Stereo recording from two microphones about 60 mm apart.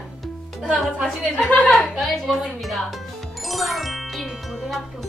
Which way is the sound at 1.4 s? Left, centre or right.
Left.